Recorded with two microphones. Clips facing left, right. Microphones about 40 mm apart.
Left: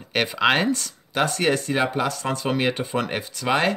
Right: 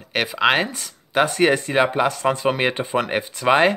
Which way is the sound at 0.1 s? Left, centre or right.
Centre.